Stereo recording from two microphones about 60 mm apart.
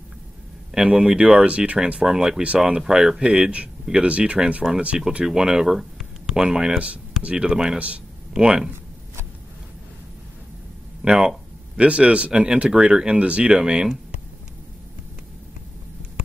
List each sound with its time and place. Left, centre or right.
0.7 s speech: centre
4.9 s speech: centre
11.0 s speech: centre